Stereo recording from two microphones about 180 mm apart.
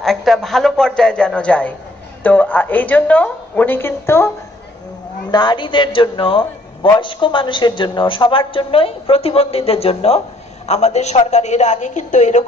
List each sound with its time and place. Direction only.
0.0 s a man's voice: centre (ahead or behind)
5.3 s a man's voice: 25° left (ahead or behind); by 12.4 s 40° left (ahead or behind)